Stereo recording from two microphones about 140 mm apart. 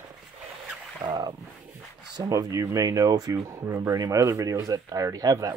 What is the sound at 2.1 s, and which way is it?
Speech, 25° right (ahead or behind).